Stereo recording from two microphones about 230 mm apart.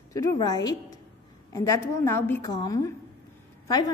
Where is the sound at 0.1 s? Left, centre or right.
Centre.